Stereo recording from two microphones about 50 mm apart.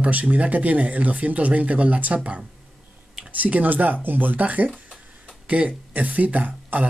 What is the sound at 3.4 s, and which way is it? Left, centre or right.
Speech, right.